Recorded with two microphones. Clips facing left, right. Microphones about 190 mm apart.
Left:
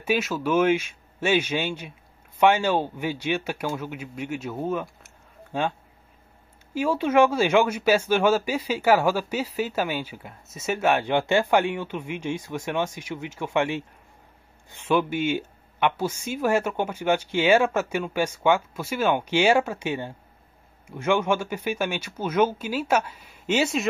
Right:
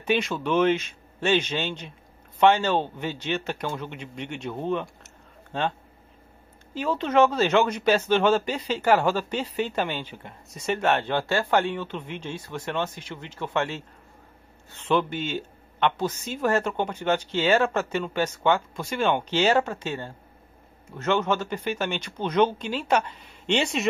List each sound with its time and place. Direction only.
0.0 s speech: 5° left (ahead or behind)
6.7 s speech: 10° left (ahead or behind)